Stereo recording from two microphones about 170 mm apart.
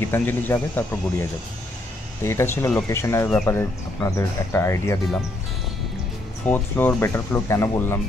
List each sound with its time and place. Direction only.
0.1 s speech: 10° left (ahead or behind)
2.2 s speech: 15° left (ahead or behind)
3.3 s speech: 5° left (ahead or behind)
3.5 s speech: 15° left (ahead or behind)
6.4 s speech: 10° left (ahead or behind)